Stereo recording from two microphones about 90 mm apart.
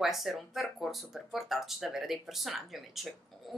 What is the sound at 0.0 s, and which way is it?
Speech, centre (ahead or behind).